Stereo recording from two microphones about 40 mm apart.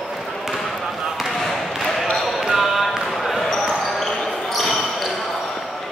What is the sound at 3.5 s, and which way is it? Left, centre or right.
Basketball bounce, centre.